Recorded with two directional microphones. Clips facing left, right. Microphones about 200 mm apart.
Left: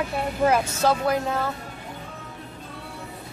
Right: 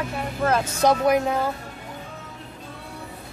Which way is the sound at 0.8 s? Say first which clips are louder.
Right 3 dB; 15° right (ahead or behind).